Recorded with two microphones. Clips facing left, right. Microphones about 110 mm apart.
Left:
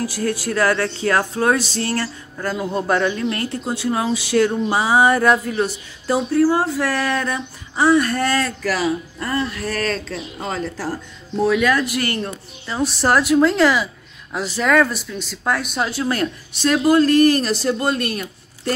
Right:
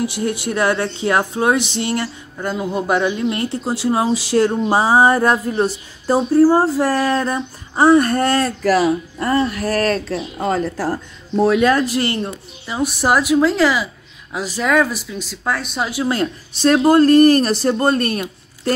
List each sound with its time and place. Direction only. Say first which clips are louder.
0.0 s speech: right 2 dB; 20° right (ahead or behind); by 15.9 s centre (ahead or behind)
15.9 s speech: right 4 dB; 20° right (ahead or behind)
16.6 s speech: right 3 dB; 40° right (ahead or behind)